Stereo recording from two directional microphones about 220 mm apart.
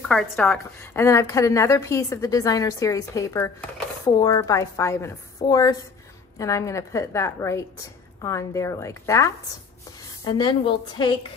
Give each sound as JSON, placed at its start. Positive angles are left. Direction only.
{"t": 0.1, "sound": "a woman's voice", "side_deg": 5}